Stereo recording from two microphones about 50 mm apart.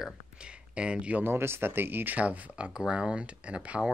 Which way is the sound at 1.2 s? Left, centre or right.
Right.